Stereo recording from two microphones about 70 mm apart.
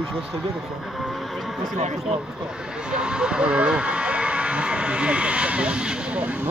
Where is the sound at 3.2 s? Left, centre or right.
Centre.